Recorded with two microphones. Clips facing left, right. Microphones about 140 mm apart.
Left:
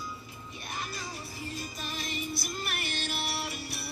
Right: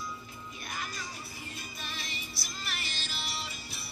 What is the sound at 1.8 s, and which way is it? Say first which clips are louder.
Music: left 6 dB; 45° left (ahead or behind).